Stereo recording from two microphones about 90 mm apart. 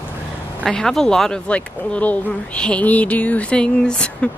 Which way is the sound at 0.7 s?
5° left (ahead or behind).